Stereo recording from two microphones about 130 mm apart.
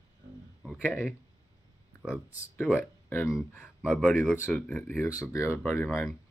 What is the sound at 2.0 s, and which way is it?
Speech, 10° left (ahead or behind).